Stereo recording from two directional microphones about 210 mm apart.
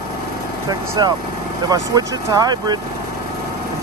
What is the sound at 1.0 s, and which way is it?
Speech, 20° right (ahead or behind).